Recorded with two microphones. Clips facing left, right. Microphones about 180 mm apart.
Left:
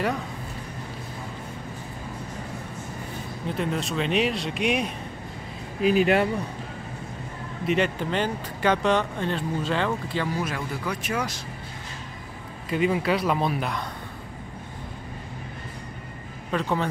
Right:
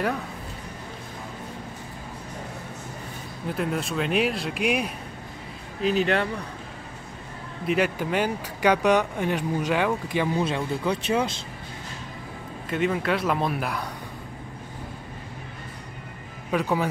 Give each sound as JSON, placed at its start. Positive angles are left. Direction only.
{"t": 3.4, "sound": "speech", "side_deg": -5}
{"t": 5.8, "sound": "speech", "side_deg": 10}
{"t": 7.6, "sound": "speech", "side_deg": -5}
{"t": 12.6, "sound": "speech", "side_deg": 5}
{"t": 16.5, "sound": "speech", "side_deg": -10}